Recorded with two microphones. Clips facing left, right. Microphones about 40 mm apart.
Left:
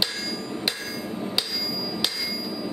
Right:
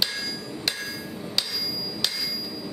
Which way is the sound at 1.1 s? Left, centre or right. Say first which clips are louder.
Left 5 dB; left.